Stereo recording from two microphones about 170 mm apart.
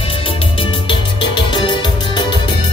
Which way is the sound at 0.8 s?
30° left (ahead or behind).